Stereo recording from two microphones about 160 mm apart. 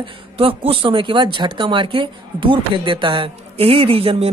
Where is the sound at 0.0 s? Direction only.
35° right (ahead or behind).